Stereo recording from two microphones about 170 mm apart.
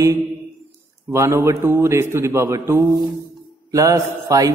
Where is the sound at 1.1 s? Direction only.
15° right (ahead or behind).